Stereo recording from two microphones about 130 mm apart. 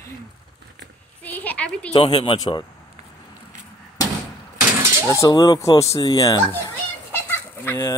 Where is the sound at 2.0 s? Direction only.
45° left (ahead or behind).